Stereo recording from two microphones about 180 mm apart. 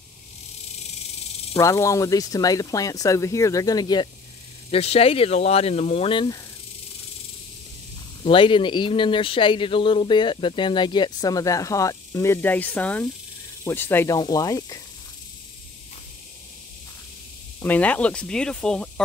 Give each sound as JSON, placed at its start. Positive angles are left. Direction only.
{"t": 1.5, "sound": "speech", "side_deg": 15}
{"t": 8.2, "sound": "speech", "side_deg": 30}
{"t": 17.6, "sound": "speech", "side_deg": 10}